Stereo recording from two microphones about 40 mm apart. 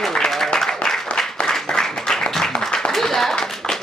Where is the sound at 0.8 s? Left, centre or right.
Left.